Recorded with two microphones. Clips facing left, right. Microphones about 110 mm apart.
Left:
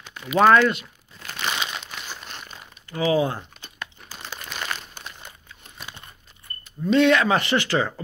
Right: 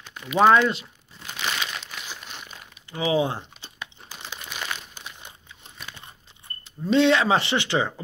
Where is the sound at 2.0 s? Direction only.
45° left (ahead or behind).